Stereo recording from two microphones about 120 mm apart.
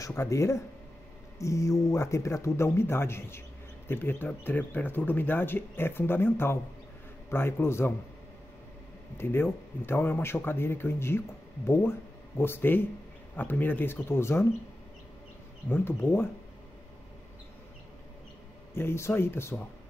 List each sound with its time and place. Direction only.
0.0 s speech: 25° left (ahead or behind)
9.2 s speech: 20° left (ahead or behind)
15.7 s speech: 20° left (ahead or behind)
18.8 s speech: 20° left (ahead or behind)